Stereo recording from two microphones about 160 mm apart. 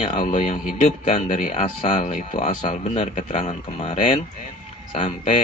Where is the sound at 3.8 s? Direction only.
35° left (ahead or behind).